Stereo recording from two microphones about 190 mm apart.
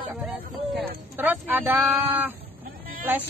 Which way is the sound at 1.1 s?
10° right (ahead or behind).